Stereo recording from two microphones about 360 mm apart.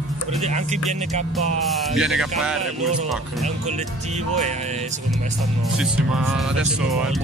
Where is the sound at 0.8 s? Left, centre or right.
Centre.